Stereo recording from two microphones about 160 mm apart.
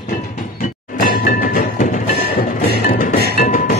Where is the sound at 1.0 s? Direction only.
65° left (ahead or behind).